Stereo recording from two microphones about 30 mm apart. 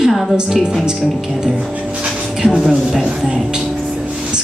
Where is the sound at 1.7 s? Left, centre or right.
Right.